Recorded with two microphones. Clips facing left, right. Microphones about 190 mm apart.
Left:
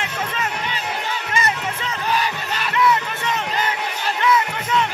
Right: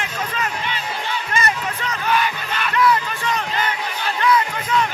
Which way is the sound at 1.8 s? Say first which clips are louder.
Right 2 dB; 35° left (ahead or behind).